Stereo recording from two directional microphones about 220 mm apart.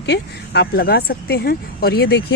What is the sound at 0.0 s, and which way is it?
Speech, 50° left (ahead or behind).